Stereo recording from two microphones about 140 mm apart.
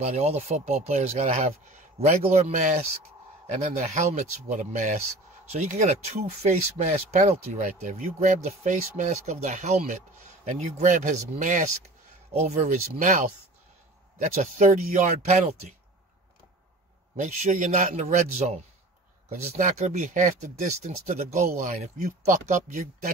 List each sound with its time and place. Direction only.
0.0 s speech: 50° right (ahead or behind)
12.3 s speech: 50° right (ahead or behind)
14.3 s speech: 55° right (ahead or behind)
17.2 s speech: 55° right (ahead or behind)